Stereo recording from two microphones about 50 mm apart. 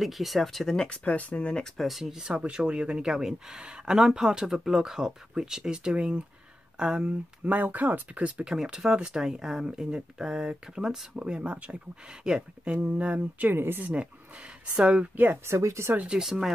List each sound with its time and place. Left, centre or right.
0.0 s speech: centre
0.7 s speech: left
1.8 s speech: centre
2.2 s speech: right
11.4 s speech: right
12.1 s speech: centre
13.5 s speech: right
13.9 s speech: right
15.4 s speech: right
16.2 s speech: centre